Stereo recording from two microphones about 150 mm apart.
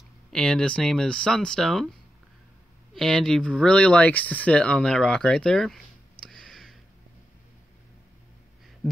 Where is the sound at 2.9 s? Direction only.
5° left (ahead or behind).